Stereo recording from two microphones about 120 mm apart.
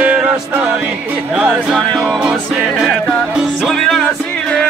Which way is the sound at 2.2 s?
10° right (ahead or behind).